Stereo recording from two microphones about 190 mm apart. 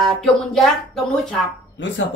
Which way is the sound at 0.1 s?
Centre (ahead or behind).